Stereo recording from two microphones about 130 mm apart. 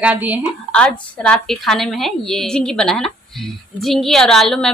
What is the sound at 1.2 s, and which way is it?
A woman's voice, 5° left (ahead or behind).